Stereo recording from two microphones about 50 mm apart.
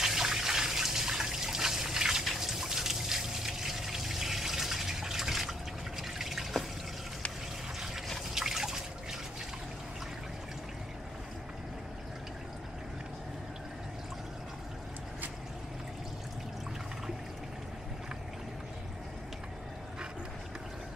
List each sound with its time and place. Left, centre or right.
0.0 s water: centre
8.4 s liquid: centre